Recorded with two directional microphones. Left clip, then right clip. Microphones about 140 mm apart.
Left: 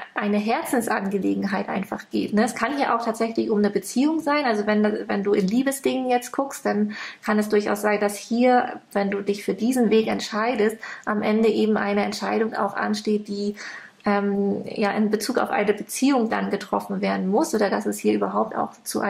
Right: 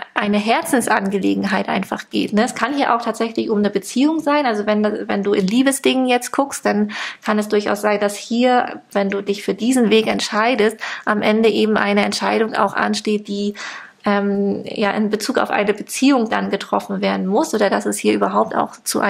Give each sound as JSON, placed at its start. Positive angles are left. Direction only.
{"t": 0.1, "sound": "a woman's voice", "side_deg": -30}
{"t": 14.8, "sound": "a woman's voice", "side_deg": -25}